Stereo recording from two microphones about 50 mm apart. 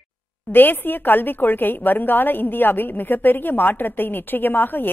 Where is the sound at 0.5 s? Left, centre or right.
Left.